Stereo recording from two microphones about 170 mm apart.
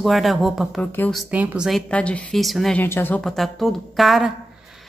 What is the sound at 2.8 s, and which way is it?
Speech, 10° left (ahead or behind).